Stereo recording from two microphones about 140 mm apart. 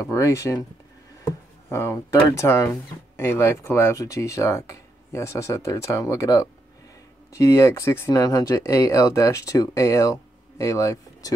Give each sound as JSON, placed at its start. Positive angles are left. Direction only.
{"t": 0.0, "sound": "speech", "side_deg": 20}